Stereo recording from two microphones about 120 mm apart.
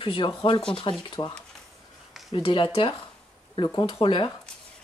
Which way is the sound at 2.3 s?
45° left (ahead or behind).